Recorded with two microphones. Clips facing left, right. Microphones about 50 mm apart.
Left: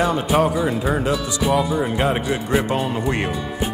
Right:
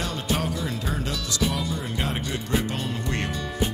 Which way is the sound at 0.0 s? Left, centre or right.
Centre.